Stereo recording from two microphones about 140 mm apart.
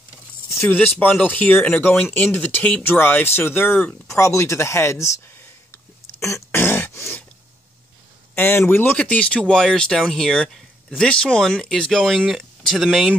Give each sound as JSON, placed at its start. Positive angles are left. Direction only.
{"t": 0.5, "sound": "speech", "side_deg": 15}
{"t": 8.4, "sound": "speech", "side_deg": 20}